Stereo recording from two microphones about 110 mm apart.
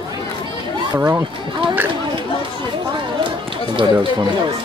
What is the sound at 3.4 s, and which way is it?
Run, 50° right (ahead or behind).